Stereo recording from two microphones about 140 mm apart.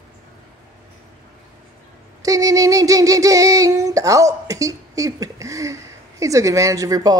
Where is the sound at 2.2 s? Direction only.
25° right (ahead or behind).